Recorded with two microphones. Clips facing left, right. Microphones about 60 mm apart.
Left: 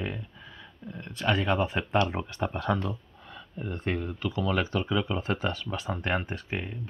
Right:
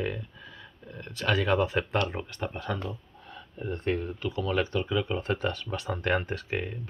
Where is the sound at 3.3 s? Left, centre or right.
Left.